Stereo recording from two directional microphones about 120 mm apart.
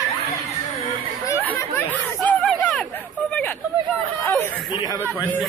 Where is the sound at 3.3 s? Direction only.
15° left (ahead or behind).